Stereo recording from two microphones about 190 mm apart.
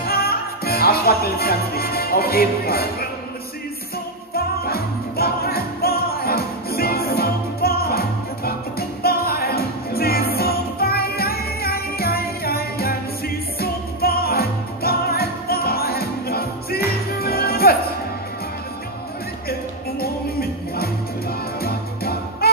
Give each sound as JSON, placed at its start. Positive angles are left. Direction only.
{"t": 0.0, "sound": "music", "side_deg": 55}
{"t": 4.6, "sound": "music", "side_deg": 55}
{"t": 20.0, "sound": "music", "side_deg": 55}